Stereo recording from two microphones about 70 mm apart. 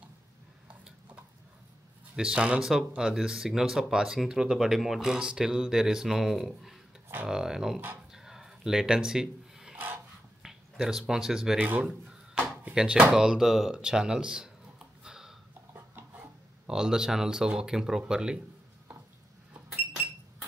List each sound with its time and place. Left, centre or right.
2.1 s speech: centre
8.1 s rub: centre
10.4 s speech: centre
11.5 s speech: right
11.8 s a sound: centre
13.1 s speech: centre
15.0 s a sound: centre
16.6 s speech: centre